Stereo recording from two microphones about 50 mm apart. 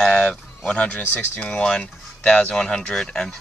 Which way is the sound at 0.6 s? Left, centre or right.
Left.